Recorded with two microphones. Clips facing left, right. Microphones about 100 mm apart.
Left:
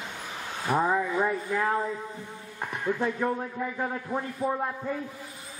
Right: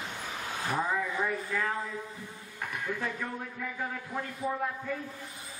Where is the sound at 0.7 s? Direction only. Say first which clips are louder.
Left 7 dB; 30° left (ahead or behind).